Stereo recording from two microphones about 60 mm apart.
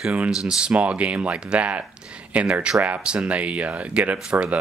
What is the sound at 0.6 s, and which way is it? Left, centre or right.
Speech, centre.